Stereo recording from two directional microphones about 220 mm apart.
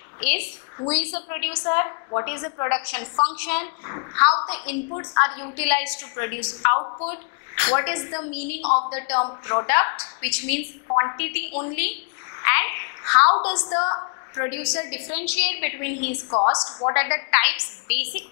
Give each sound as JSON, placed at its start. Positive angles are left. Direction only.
{"t": 0.2, "sound": "a woman's voice", "side_deg": 10}
{"t": 8.6, "sound": "a woman's voice", "side_deg": 25}
{"t": 8.9, "sound": "a woman's voice", "side_deg": 10}
{"t": 9.2, "sound": "a woman's voice", "side_deg": 25}
{"t": 9.7, "sound": "a woman's voice", "side_deg": 15}
{"t": 12.4, "sound": "a sound", "side_deg": 15}
{"t": 13.8, "sound": "a woman's voice", "side_deg": 20}
{"t": 16.3, "sound": "a woman's voice", "side_deg": 30}
{"t": 17.3, "sound": "a woman's voice", "side_deg": 10}